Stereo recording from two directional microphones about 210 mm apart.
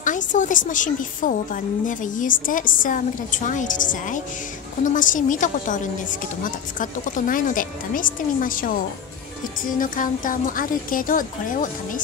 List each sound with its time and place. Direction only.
0.0 s a woman's voice: 35° left (ahead or behind)